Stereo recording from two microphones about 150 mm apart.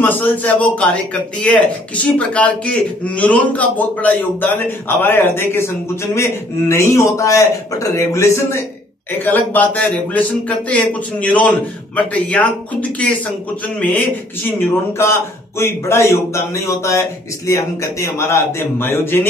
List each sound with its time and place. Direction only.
0.0 s a man's voice: 10° left (ahead or behind)
14.6 s speech: 15° left (ahead or behind)